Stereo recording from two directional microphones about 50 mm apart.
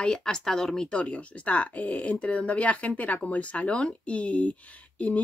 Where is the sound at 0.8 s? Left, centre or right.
Left.